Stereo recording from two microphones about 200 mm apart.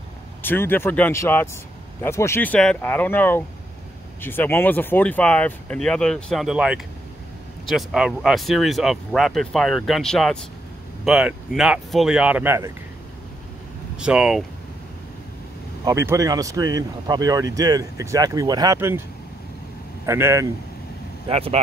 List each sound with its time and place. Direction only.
0.4 s speech: 10° left (ahead or behind); by 12.7 s 15° right (ahead or behind)
13.9 s speech: 5° right (ahead or behind)
15.8 s speech: 15° right (ahead or behind)
20.1 s speech: 15° right (ahead or behind)
21.3 s speech: 30° right (ahead or behind)